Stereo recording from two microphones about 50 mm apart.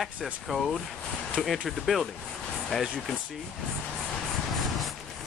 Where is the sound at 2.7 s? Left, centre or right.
Centre.